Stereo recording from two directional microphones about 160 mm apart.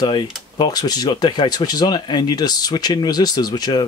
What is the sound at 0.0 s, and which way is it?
Speech, 30° left (ahead or behind).